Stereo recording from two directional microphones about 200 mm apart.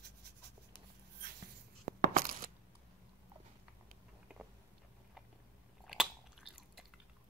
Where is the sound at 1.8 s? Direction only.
45° right (ahead or behind).